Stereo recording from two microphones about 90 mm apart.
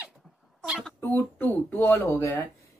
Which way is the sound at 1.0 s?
20° left (ahead or behind).